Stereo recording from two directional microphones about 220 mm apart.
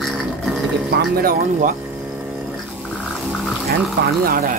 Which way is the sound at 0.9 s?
45° right (ahead or behind).